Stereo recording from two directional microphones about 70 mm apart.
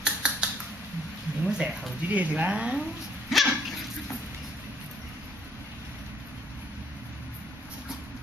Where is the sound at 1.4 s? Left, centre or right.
Centre.